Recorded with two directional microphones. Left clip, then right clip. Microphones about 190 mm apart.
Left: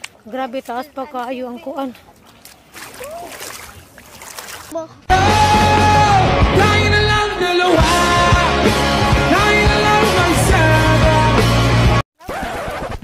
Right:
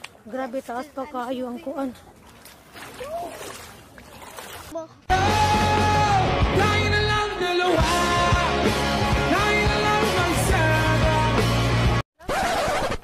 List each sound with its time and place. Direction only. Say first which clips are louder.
0.3 s speech: left 6 dB; 20° left (ahead or behind)
1.0 s speech: left 5 dB; 10° left (ahead or behind)
4.7 s music: left 8 dB; centre (ahead or behind)